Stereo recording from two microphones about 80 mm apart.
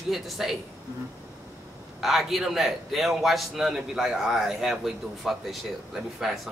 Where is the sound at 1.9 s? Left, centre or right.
Centre.